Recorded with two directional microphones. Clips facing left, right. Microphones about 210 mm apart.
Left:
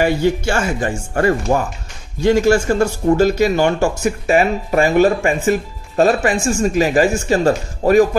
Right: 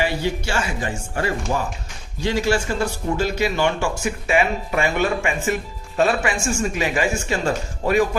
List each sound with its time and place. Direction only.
0.0 s speech: 50° left (ahead or behind)